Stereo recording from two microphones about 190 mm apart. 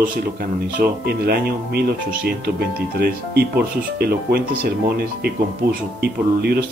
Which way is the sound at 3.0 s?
55° right (ahead or behind).